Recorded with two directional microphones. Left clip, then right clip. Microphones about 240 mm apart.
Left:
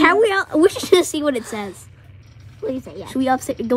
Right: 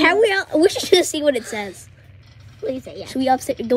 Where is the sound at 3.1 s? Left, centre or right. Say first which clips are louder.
Right 1 dB; centre.